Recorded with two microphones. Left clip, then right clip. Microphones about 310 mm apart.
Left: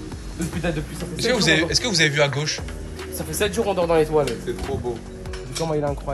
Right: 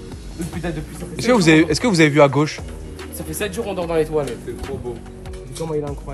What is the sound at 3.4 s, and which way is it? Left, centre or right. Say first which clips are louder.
Speech: left 3 dB; centre.